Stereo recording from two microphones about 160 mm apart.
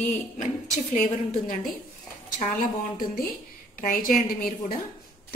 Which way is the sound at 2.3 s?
55° left (ahead or behind).